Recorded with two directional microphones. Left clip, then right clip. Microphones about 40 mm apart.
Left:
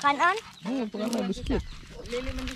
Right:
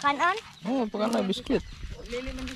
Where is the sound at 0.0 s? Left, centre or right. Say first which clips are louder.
Left 1 dB; left.